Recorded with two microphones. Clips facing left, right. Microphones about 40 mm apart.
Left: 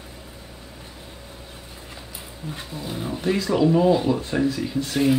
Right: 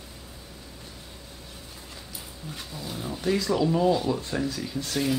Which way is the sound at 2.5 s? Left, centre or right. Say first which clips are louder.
Left 4 dB; left.